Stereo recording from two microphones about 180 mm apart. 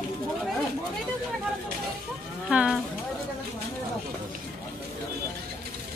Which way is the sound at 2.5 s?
5° right (ahead or behind).